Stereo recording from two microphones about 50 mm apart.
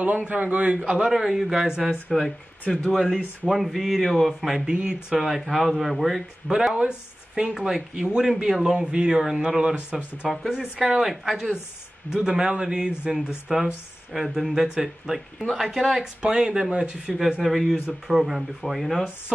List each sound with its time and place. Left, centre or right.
0.3 s a man's voice: right
0.8 s speech: centre
2.1 s speech: centre
2.6 s speech: left
2.9 s speech: centre
4.7 s a man's voice: right
5.2 s speech: centre
6.5 s a man's voice: centre
17.4 s speech: centre